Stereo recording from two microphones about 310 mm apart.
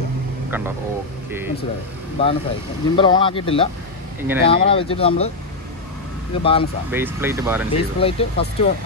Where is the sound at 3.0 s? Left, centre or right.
Centre.